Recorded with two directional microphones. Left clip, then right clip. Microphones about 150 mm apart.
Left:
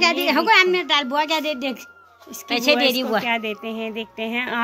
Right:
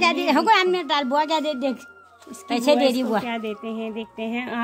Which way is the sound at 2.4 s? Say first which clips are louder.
Left 1 dB; 55° right (ahead or behind).